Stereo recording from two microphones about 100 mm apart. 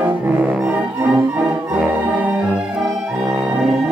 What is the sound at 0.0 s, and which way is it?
Music, 15° right (ahead or behind).